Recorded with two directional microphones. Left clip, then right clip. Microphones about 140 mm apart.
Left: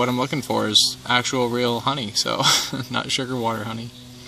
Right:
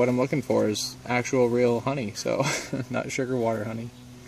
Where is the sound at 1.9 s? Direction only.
5° right (ahead or behind).